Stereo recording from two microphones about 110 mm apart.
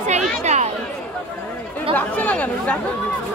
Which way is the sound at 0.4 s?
90° right.